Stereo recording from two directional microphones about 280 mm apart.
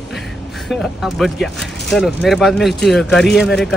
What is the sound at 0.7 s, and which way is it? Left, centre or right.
Speech, centre.